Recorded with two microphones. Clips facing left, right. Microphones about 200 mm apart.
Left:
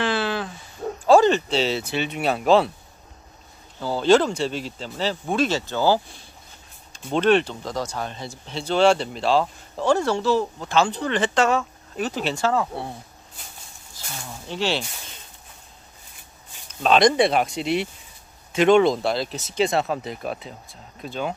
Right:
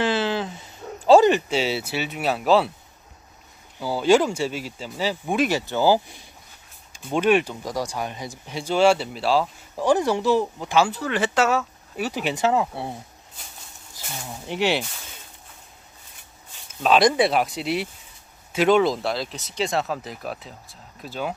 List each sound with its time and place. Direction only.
0.0 s a sound: 20° right (ahead or behind)
1.1 s speech: 15° right (ahead or behind)
3.8 s speech: 10° right (ahead or behind)
14.1 s speech: 20° right (ahead or behind)
16.6 s speech: 5° right (ahead or behind)